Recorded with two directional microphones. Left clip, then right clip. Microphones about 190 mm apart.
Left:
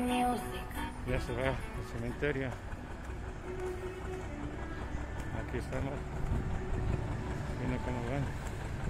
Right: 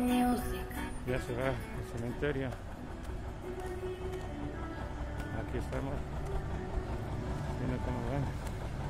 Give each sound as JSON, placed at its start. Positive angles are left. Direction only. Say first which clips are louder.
{"t": 0.0, "sound": "music", "louder": "even", "side_deg": -55}
{"t": 1.0, "sound": "speech", "louder": "even", "side_deg": 0}